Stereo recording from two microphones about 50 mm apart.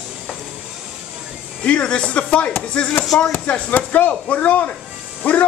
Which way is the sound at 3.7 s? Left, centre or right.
Left.